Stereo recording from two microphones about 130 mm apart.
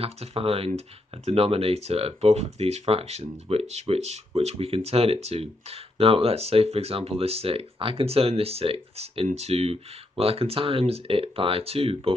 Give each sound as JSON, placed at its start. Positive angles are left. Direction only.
{"t": 0.0, "sound": "speech", "side_deg": -45}